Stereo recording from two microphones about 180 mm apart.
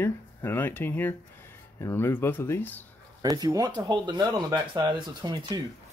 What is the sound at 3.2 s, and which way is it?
Speech, 20° right (ahead or behind).